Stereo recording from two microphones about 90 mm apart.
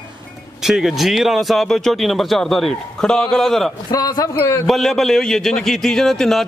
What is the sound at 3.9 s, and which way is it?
Speech, 45° left (ahead or behind).